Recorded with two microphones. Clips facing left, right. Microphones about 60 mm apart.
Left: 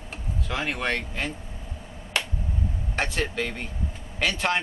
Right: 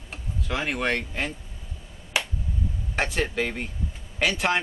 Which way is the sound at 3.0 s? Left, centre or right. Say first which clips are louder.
Right 2 dB; centre.